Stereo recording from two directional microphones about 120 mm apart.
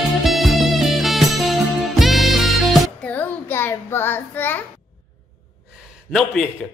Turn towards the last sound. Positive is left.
turn(degrees=5)  # may be behind; listen again after turning